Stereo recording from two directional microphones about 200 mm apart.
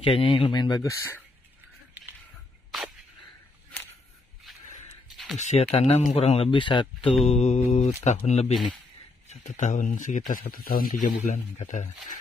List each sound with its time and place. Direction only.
0.0 s speech: 25° left (ahead or behind)
5.1 s a sound: centre (ahead or behind)
5.4 s speech: 30° left (ahead or behind)